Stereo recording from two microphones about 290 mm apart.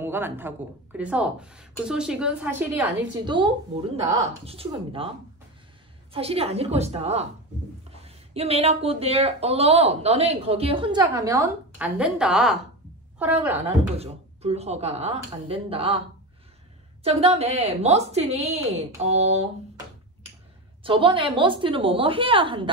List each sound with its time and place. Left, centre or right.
0.0 s a woman's voice: centre
6.1 s a woman's voice: centre
13.7 s speech: right
17.0 s speech: right
20.8 s a woman's voice: centre